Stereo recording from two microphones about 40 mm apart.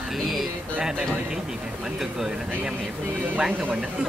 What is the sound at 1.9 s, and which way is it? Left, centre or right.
Speech, centre.